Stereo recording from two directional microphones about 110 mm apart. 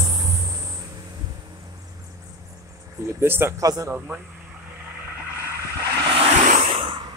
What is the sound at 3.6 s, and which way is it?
Speech, 35° right (ahead or behind).